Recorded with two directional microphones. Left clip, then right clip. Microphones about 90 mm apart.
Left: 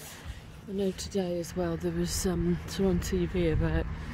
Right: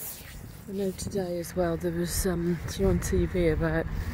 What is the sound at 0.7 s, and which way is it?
Speech, 30° left (ahead or behind).